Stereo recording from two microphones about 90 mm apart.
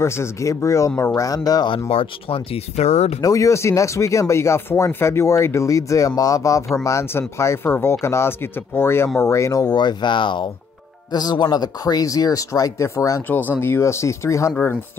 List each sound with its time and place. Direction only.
0.0 s speech: 30° left (ahead or behind)
1.9 s speech: 90° left
3.2 s speech: 40° left (ahead or behind)
9.7 s speech: 55° left (ahead or behind)
11.1 s speech: 50° left (ahead or behind)
13.3 s speech: 20° left (ahead or behind)